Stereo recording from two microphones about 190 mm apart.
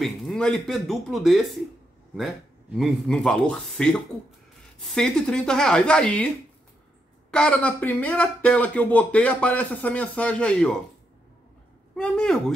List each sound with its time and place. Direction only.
0.0 s a man's voice: centre (ahead or behind)
2.7 s a man's voice: centre (ahead or behind)
7.2 s speech: 5° left (ahead or behind)
11.9 s a man's voice: 5° left (ahead or behind)